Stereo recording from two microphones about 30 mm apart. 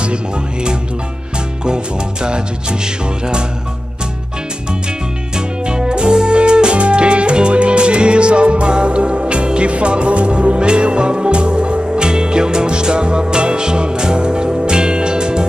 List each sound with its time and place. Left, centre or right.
2.2 s music: right
5.7 s music: right